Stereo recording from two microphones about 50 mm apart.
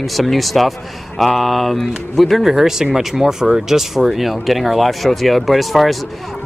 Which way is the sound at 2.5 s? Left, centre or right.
Centre.